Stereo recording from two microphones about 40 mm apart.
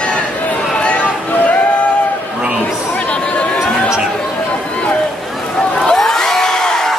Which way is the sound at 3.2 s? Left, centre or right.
Left.